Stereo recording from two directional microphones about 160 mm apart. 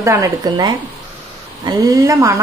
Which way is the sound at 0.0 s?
20° right (ahead or behind).